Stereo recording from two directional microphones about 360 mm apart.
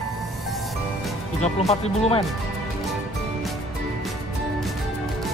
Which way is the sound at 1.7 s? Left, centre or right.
Centre.